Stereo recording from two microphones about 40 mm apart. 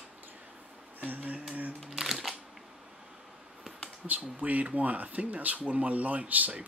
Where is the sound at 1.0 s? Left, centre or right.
Right.